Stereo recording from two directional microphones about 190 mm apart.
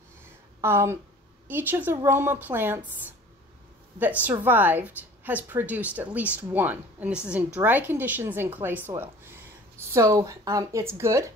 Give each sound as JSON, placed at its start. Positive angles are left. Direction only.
{"t": 0.6, "sound": "a woman's voice", "side_deg": -15}
{"t": 4.0, "sound": "a woman's voice", "side_deg": -10}